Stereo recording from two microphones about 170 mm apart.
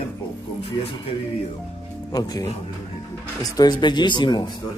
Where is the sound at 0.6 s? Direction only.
30° left (ahead or behind).